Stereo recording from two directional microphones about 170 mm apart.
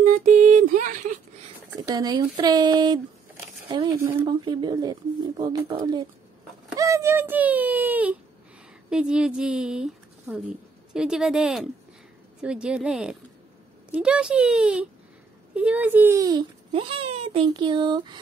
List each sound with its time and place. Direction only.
0.0 s a sound: 45° right (ahead or behind)
1.8 s speech: 25° right (ahead or behind)
6.7 s baby cry: 20° right (ahead or behind)
8.9 s a woman's voice: 5° right (ahead or behind); by 18.2 s 25° right (ahead or behind)